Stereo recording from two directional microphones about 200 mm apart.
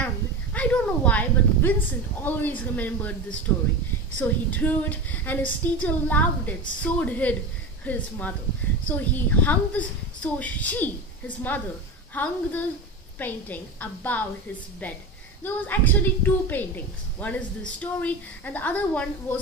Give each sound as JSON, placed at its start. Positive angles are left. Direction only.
{"t": 0.0, "sound": "a sound", "side_deg": 5}
{"t": 2.2, "sound": "a woman's voice", "side_deg": 10}
{"t": 15.4, "sound": "a woman's voice", "side_deg": 10}